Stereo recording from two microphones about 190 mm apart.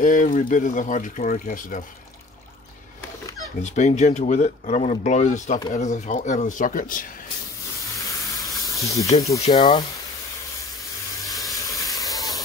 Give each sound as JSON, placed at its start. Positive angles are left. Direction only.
{"t": 0.0, "sound": "speech", "side_deg": 45}
{"t": 3.6, "sound": "speech", "side_deg": 35}
{"t": 8.7, "sound": "speech", "side_deg": 15}
{"t": 11.2, "sound": "sizzle", "side_deg": 0}
{"t": 11.8, "sound": "steam", "side_deg": 20}